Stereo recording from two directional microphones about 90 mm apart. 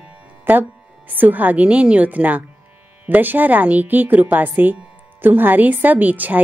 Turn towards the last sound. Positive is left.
turn(degrees=-20)  # may be behind; listen again after turning